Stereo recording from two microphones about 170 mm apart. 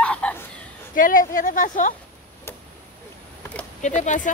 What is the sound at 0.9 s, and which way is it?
Speech, 55° left (ahead or behind).